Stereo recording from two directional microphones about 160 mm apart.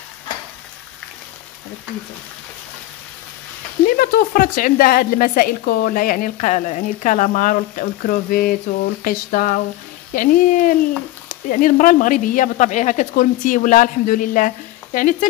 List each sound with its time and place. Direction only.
3.8 s speech: 60° left (ahead or behind)